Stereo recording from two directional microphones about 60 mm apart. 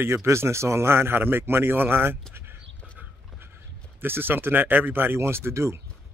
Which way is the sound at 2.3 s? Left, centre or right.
Right.